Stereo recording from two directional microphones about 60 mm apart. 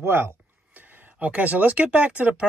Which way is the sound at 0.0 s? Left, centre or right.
Right.